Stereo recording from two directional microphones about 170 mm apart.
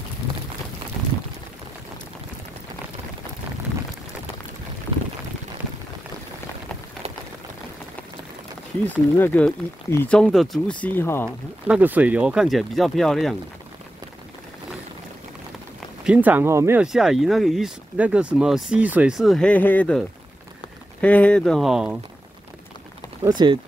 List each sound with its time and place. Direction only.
8.8 s speech: 10° left (ahead or behind)
10.8 s speech: 10° left (ahead or behind)
11.6 s speech: 10° right (ahead or behind)
16.0 s speech: 10° right (ahead or behind)
16.8 s speech: centre (ahead or behind)
23.2 s speech: 25° right (ahead or behind)